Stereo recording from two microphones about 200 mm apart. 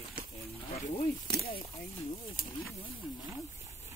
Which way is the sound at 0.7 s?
20° left (ahead or behind).